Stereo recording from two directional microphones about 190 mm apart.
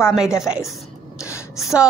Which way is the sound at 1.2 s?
15° left (ahead or behind).